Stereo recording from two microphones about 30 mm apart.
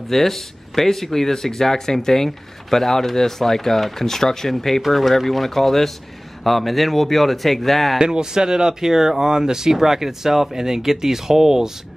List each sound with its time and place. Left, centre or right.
0.1 s speech: centre
8.0 s speech: right